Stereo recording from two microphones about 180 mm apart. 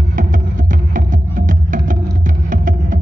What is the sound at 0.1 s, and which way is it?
Music, 45° right (ahead or behind).